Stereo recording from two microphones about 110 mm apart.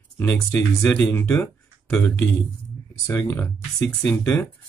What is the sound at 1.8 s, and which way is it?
Speech, 5° left (ahead or behind).